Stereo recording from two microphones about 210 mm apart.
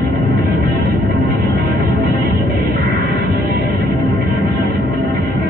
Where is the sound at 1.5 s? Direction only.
45° right (ahead or behind).